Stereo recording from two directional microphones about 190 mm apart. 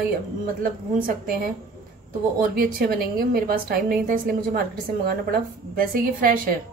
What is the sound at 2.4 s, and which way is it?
Speech, 50° right (ahead or behind).